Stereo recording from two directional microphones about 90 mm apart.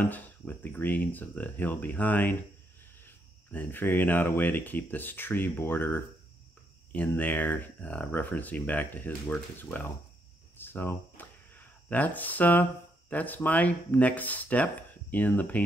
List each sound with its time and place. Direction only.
0.0 s speech: 20° left (ahead or behind)
7.2 s speech: 20° left (ahead or behind)
10.6 s a sound: 25° left (ahead or behind)
13.1 s speech: 20° left (ahead or behind)